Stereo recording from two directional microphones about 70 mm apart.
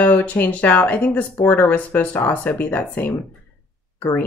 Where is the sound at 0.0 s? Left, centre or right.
Left.